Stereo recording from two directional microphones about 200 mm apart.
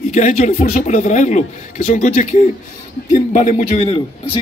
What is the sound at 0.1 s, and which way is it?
A man's voice, 40° left (ahead or behind).